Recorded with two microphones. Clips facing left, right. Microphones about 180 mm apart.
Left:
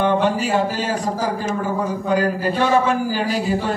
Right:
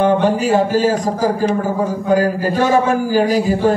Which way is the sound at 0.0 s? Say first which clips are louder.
Right 4 dB; 45° right (ahead or behind).